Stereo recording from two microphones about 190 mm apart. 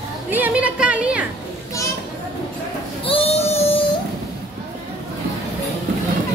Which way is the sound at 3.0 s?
30° left (ahead or behind).